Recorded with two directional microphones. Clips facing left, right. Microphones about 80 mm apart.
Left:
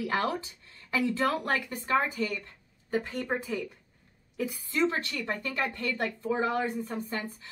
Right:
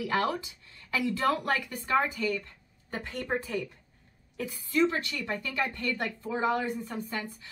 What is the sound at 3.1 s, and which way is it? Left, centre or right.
Speech, centre.